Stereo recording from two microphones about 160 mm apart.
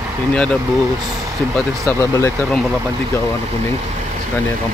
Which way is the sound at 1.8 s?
20° left (ahead or behind).